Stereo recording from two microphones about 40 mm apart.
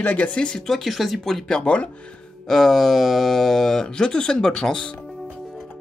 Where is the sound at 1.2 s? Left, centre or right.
Centre.